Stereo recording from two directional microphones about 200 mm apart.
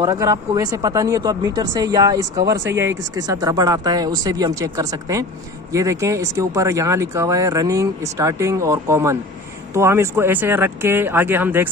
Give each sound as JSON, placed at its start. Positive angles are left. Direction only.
{"t": 0.0, "sound": "speech", "side_deg": -15}